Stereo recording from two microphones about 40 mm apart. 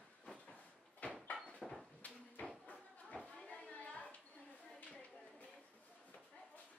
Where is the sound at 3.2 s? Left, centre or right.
Left.